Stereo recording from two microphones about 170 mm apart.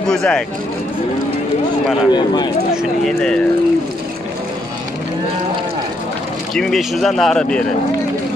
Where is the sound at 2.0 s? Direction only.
25° left (ahead or behind).